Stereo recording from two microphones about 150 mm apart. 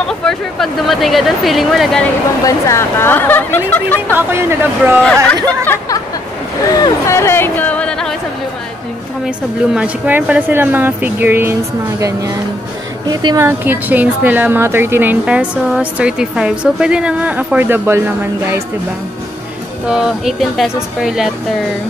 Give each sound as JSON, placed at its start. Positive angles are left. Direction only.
{"t": 0.2, "sound": "speech", "side_deg": 5}
{"t": 2.4, "sound": "a woman's voice", "side_deg": 20}
{"t": 4.3, "sound": "speech", "side_deg": -15}
{"t": 5.0, "sound": "a woman's voice", "side_deg": 5}
{"t": 6.7, "sound": "a woman's voice", "side_deg": 20}
{"t": 9.8, "sound": "speech", "side_deg": -10}
{"t": 13.5, "sound": "speech", "side_deg": -10}
{"t": 19.9, "sound": "speech", "side_deg": -5}